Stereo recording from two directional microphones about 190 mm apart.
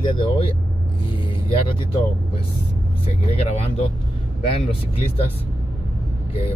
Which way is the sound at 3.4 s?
35° left (ahead or behind).